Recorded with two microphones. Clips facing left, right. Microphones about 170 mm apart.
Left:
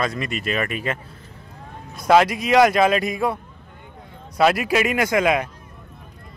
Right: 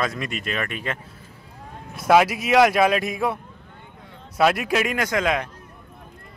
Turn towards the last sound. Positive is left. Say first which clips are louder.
# left 4 dB
turn(degrees=10)  # may be behind; listen again after turning